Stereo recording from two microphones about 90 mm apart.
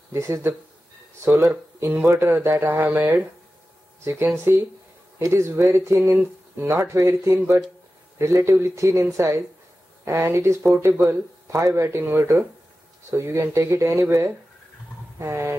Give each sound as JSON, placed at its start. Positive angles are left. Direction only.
{"t": 0.1, "sound": "speech", "side_deg": -30}
{"t": 5.2, "sound": "speech", "side_deg": -30}
{"t": 15.1, "sound": "speech", "side_deg": -30}